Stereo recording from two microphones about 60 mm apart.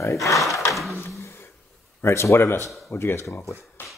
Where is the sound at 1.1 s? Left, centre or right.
Left.